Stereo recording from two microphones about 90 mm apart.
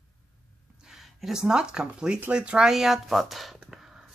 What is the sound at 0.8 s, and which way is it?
Speech, 5° right (ahead or behind).